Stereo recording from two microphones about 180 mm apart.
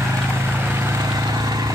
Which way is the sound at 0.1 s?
10° right (ahead or behind).